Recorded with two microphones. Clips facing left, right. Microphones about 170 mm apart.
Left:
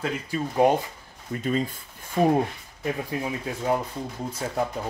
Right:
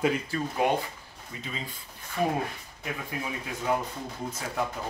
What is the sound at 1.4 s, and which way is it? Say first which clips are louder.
Speech: left 13 dB; 50° left (ahead or behind).